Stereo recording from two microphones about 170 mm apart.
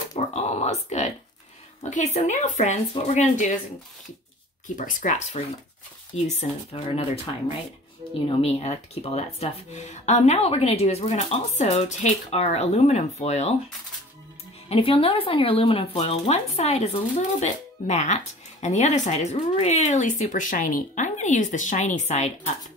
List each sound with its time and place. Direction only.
0.3 s a sound: 40° left (ahead or behind)
1.8 s speech: 45° left (ahead or behind)
4.6 s speech: 50° left (ahead or behind)
14.7 s speech: 35° left (ahead or behind)